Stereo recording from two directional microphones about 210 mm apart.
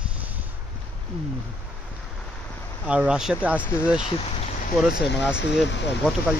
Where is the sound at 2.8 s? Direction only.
5° right (ahead or behind).